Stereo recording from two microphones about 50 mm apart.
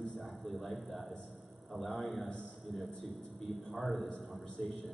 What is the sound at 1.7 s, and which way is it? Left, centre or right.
A man's voice, centre.